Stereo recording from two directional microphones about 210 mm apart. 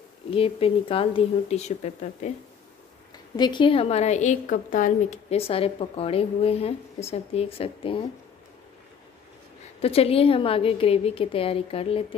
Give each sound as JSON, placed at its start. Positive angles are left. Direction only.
{"t": 0.3, "sound": "a woman's voice", "side_deg": 25}
{"t": 3.3, "sound": "a woman's voice", "side_deg": 20}
{"t": 9.8, "sound": "a woman's voice", "side_deg": 30}